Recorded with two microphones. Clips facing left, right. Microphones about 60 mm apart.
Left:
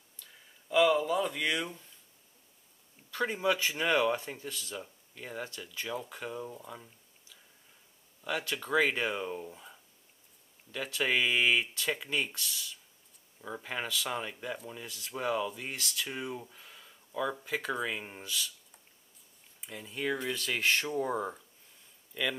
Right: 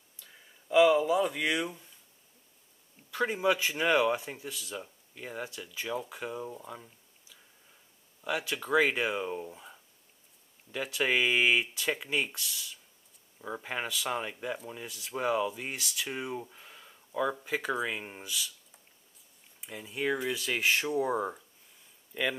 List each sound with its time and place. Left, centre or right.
0.2 s speech: centre
3.1 s speech: centre
22.1 s speech: centre